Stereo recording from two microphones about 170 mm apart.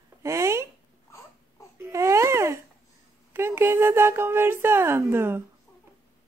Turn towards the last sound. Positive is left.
turn(degrees=-15)  # may be behind; listen again after turning